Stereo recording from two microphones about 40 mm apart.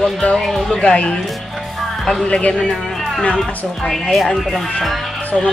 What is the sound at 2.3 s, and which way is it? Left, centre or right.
Speech, left.